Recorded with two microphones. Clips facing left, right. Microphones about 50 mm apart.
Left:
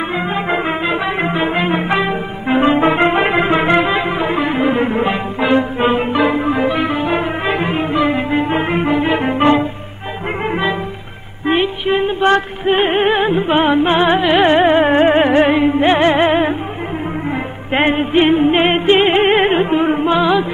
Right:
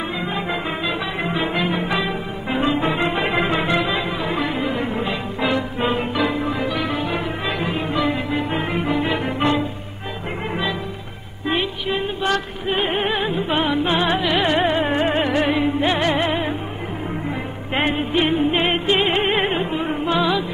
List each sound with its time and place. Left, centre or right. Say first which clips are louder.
0.2 s music: left 6 dB; left
2.6 s music: left 7 dB; left
17.8 s music: left 7 dB; left